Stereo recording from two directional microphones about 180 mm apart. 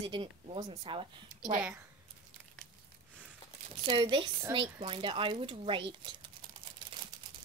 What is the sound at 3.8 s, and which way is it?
Speech, 25° right (ahead or behind).